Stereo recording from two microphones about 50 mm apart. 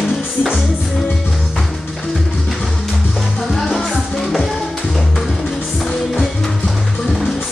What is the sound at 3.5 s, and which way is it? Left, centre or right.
Music, centre.